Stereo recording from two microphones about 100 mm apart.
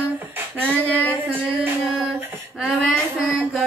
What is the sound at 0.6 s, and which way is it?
Speech, 15° left (ahead or behind).